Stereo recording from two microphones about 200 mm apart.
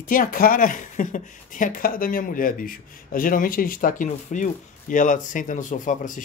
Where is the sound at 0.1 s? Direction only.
45° left (ahead or behind).